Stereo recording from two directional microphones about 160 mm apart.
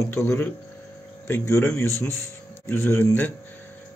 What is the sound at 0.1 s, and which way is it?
Speech, 15° left (ahead or behind).